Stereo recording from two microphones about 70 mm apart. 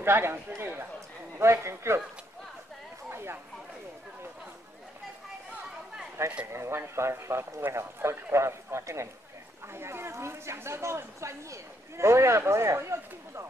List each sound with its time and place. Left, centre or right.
0.0 s speech: right
1.4 s speech: right
3.1 s a sound: right
6.2 s speech: right